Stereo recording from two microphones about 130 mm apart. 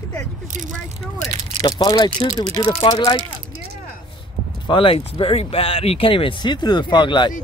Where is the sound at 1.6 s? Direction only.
30° left (ahead or behind).